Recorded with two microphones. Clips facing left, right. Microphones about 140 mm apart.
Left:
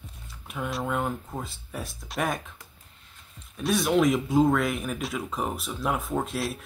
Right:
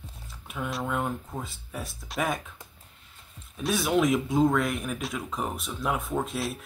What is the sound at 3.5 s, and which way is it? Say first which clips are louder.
Speech: left 2 dB; centre (ahead or behind).